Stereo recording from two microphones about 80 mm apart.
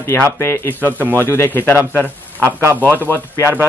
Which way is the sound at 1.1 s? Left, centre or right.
Left.